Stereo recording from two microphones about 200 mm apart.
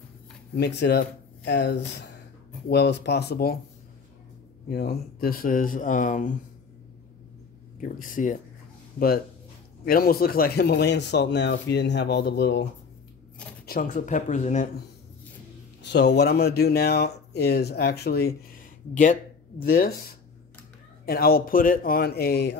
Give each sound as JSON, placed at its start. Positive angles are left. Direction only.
{"t": 0.6, "sound": "speech", "side_deg": 55}
{"t": 4.6, "sound": "speech", "side_deg": 50}
{"t": 7.8, "sound": "speech", "side_deg": 40}
{"t": 9.8, "sound": "speech", "side_deg": 50}
{"t": 13.7, "sound": "speech", "side_deg": 45}
{"t": 15.9, "sound": "speech", "side_deg": 60}
{"t": 21.0, "sound": "speech", "side_deg": 50}